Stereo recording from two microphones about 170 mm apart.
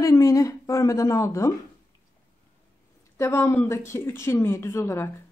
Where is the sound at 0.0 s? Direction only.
20° left (ahead or behind).